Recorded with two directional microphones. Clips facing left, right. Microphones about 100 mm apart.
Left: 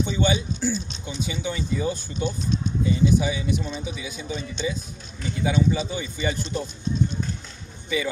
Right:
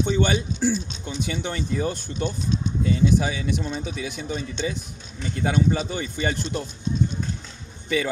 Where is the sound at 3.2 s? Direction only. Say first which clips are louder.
Even; 70° right (ahead or behind).